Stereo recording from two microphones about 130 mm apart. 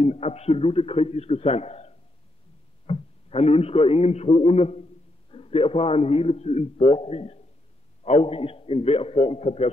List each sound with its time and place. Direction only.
0.0 s a man's voice: 55° left (ahead or behind)
2.9 s a man's voice: 50° left (ahead or behind)